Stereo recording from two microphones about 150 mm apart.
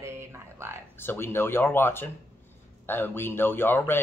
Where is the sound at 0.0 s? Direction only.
15° right (ahead or behind).